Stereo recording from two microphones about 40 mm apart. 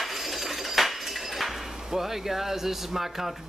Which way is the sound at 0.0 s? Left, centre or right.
Centre.